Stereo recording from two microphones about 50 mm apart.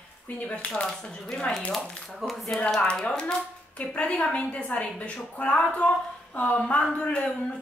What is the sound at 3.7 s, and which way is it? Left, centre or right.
Speech, left.